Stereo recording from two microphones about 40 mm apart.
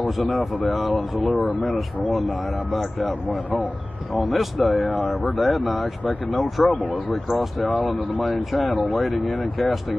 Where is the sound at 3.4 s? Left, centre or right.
Left.